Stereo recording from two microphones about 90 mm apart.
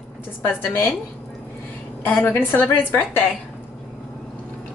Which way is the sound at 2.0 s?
20° left (ahead or behind).